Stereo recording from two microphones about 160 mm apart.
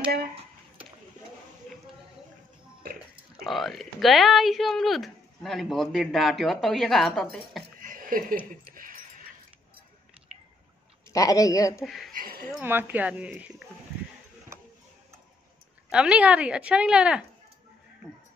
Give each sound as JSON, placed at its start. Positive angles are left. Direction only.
{"t": 2.8, "sound": "music", "side_deg": -65}
{"t": 3.4, "sound": "speech", "side_deg": 0}
{"t": 7.8, "sound": "a sound", "side_deg": -60}
{"t": 11.1, "sound": "a man's voice", "side_deg": 20}
{"t": 11.8, "sound": "speech", "side_deg": 0}
{"t": 12.1, "sound": "a sound", "side_deg": -65}
{"t": 12.6, "sound": "speech", "side_deg": -15}
{"t": 15.9, "sound": "speech", "side_deg": -5}